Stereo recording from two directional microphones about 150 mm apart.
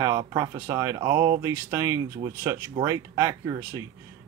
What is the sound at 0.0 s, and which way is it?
Speech, 25° right (ahead or behind).